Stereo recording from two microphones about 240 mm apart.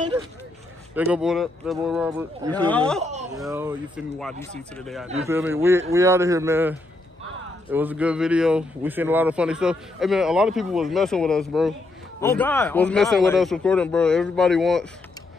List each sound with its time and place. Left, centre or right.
0.1 s speech: centre
0.9 s a man's voice: centre
3.0 s speech: right
3.4 s a man's voice: centre
4.2 s a man's voice: centre